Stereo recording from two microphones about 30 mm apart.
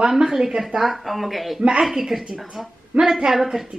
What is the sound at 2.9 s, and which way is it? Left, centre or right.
Speech, right.